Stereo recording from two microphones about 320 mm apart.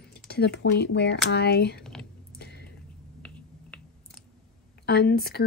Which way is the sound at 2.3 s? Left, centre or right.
Left.